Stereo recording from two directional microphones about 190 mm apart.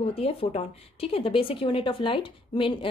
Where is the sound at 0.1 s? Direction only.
30° left (ahead or behind).